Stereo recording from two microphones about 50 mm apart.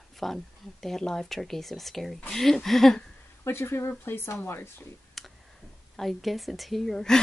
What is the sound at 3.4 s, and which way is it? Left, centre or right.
Speech, left.